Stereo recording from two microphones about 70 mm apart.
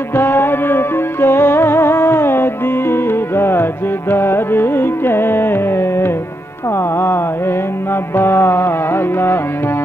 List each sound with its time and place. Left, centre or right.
0.1 s music: left
4.1 s carnatic music: left
8.2 s music: left